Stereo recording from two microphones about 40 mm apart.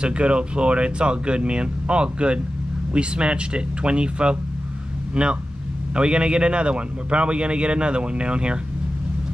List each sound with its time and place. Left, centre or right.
0.0 s a man's voice: right